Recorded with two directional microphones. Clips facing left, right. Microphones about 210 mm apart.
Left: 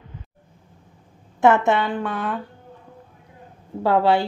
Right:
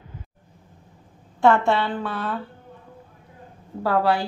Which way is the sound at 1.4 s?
20° left (ahead or behind).